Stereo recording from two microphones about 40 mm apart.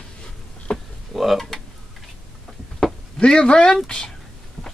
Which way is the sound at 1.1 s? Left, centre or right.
Centre.